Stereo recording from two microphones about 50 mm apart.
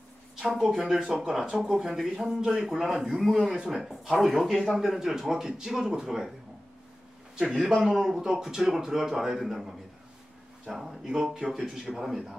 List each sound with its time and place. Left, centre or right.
0.6 s speech: centre
7.5 s speech: centre